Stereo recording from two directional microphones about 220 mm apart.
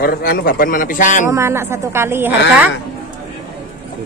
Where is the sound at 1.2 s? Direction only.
10° right (ahead or behind).